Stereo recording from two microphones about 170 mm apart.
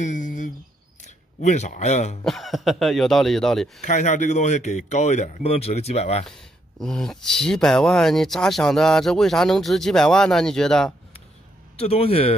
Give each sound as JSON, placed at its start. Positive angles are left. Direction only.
{"t": 0.0, "sound": "a sound", "side_deg": 50}
{"t": 1.0, "sound": "speech", "side_deg": 45}
{"t": 2.2, "sound": "speech", "side_deg": 0}
{"t": 3.8, "sound": "speech", "side_deg": 45}
{"t": 6.2, "sound": "speech", "side_deg": 5}
{"t": 11.7, "sound": "a man's voice", "side_deg": 35}